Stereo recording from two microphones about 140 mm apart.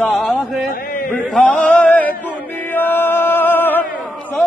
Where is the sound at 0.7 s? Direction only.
90° left.